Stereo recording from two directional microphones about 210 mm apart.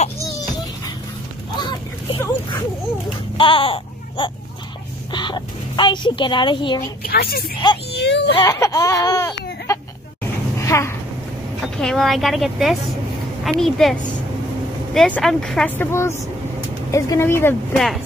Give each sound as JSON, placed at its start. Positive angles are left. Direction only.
{"t": 1.6, "sound": "a sound", "side_deg": 20}
{"t": 3.3, "sound": "speech", "side_deg": 25}
{"t": 7.1, "sound": "speech", "side_deg": 45}
{"t": 7.5, "sound": "speech", "side_deg": 25}
{"t": 7.9, "sound": "speech", "side_deg": 55}
{"t": 8.4, "sound": "speech", "side_deg": 15}
{"t": 10.6, "sound": "a sound", "side_deg": 15}
{"t": 11.6, "sound": "speech", "side_deg": 0}
{"t": 15.0, "sound": "speech", "side_deg": 5}
{"t": 17.7, "sound": "speech", "side_deg": 0}